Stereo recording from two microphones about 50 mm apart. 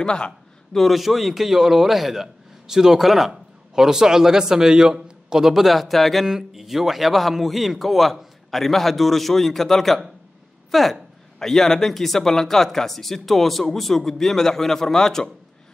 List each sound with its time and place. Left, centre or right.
0.0 s speech: centre
0.7 s a man's voice: centre